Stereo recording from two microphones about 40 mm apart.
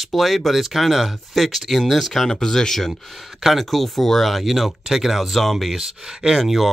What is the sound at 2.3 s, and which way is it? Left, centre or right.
Speech, centre.